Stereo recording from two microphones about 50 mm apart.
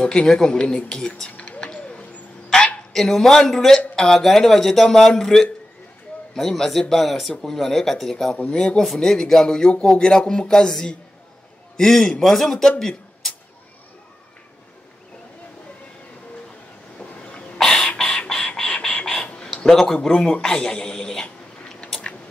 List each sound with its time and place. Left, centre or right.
0.0 s speech: centre
1.3 s bird: left
2.9 s a man's voice: centre
17.2 s a sound: left
17.6 s a sound: centre
18.1 s chicken: centre
19.3 s a man's voice: centre